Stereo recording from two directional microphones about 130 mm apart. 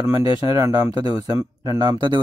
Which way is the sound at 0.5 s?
25° right (ahead or behind).